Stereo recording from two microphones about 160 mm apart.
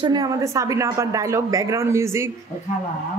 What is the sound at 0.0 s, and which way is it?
A woman's voice, 25° right (ahead or behind).